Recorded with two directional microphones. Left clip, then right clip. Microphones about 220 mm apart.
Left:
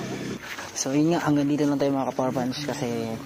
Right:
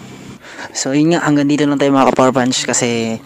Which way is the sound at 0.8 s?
45° right (ahead or behind).